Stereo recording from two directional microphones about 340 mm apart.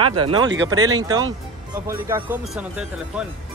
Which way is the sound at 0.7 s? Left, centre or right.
Centre.